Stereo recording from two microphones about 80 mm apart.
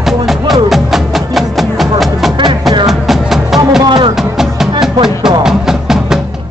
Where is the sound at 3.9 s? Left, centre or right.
Right.